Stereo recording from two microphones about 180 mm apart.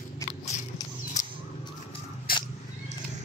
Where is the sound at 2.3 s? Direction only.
55° left (ahead or behind).